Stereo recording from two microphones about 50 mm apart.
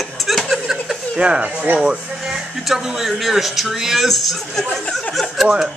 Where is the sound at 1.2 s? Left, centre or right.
Right.